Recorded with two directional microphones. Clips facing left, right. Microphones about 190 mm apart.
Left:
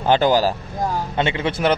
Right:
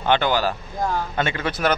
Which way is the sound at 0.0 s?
35° left (ahead or behind).